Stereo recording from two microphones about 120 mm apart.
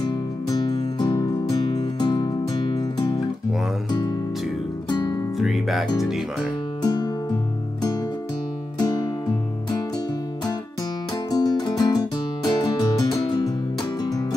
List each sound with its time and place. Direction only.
0.0 s music: 35° left (ahead or behind)
3.9 s music: 35° left (ahead or behind)
5.4 s music: centre (ahead or behind)
5.9 s speech: centre (ahead or behind)
6.8 s music: 35° left (ahead or behind)
8.7 s music: 35° left (ahead or behind)
11.2 s music: 30° left (ahead or behind)